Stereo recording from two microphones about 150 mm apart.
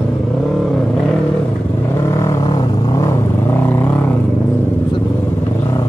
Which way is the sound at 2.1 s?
20° left (ahead or behind).